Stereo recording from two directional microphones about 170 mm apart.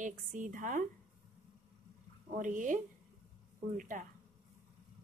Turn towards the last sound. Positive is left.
turn(degrees=-50)  # may be behind; listen again after turning